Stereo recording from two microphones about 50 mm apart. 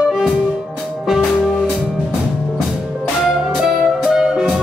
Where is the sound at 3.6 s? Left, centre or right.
Centre.